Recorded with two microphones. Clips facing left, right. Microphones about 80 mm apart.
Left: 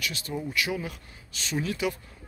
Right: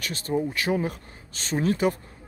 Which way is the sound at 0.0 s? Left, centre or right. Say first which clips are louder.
Right 6 dB; right.